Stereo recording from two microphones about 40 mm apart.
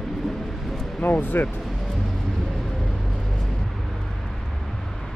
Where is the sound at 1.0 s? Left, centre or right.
Left.